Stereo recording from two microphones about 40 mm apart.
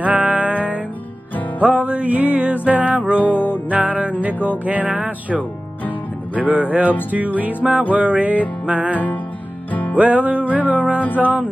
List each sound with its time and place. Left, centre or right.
0.0 s music: right
3.2 s music: left
3.7 s music: right
9.7 s music: left
9.9 s music: right